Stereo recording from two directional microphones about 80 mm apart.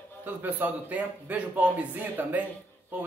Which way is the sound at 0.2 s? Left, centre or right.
Right.